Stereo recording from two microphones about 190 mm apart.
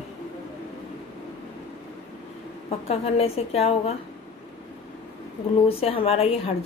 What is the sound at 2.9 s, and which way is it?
A woman's voice, 30° left (ahead or behind).